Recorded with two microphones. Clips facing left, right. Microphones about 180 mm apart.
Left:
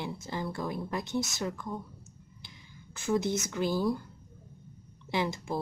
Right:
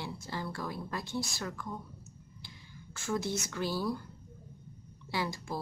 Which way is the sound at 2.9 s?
20° left (ahead or behind).